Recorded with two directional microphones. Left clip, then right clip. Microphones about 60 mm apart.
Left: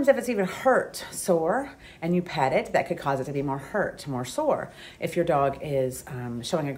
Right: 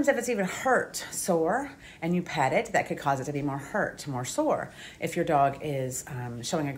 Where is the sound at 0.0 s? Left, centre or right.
Left.